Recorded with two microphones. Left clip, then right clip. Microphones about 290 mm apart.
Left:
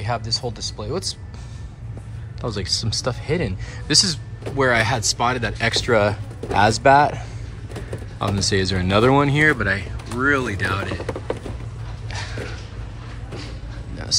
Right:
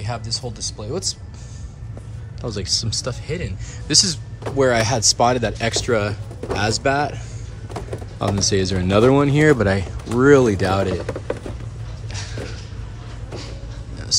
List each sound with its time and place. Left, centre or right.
0.0 s speech: centre
2.4 s speech: centre
8.2 s speech: centre
10.9 s speech: centre